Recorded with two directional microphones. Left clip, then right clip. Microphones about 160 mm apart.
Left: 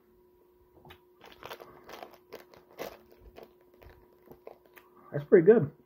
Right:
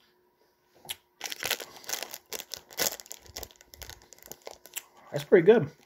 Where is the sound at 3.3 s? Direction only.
20° right (ahead or behind).